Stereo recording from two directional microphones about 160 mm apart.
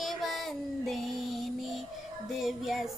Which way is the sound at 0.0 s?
Centre (ahead or behind).